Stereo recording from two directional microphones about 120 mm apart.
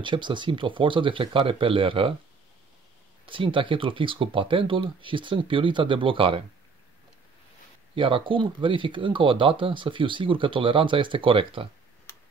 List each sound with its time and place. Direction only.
0.0 s speech: 40° right (ahead or behind)
3.3 s speech: 45° right (ahead or behind)
7.9 s speech: 45° right (ahead or behind)